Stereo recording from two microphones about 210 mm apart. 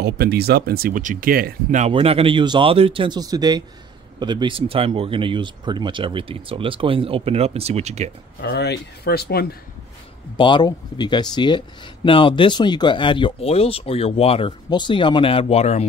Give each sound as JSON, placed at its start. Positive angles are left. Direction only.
{"t": 0.0, "sound": "speech", "side_deg": -50}
{"t": 1.9, "sound": "speech", "side_deg": -25}
{"t": 8.4, "sound": "speech", "side_deg": 50}
{"t": 10.3, "sound": "speech", "side_deg": 20}